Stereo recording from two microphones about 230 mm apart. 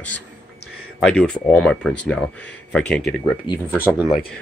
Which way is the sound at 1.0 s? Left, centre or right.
Centre.